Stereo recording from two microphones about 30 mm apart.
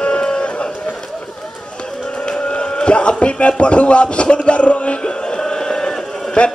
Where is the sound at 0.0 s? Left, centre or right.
Left.